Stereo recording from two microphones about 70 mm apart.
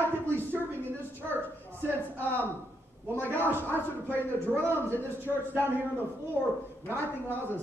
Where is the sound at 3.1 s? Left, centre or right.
Right.